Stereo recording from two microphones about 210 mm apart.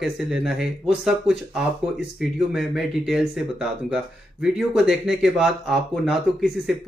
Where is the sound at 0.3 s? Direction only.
Centre (ahead or behind).